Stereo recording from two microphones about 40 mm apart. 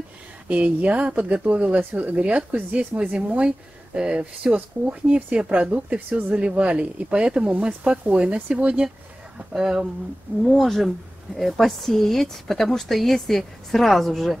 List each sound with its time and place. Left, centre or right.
0.5 s a woman's voice: right
9.5 s speech: centre
10.4 s speech: centre